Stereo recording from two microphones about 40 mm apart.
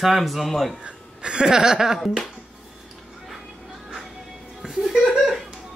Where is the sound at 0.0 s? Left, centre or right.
Centre.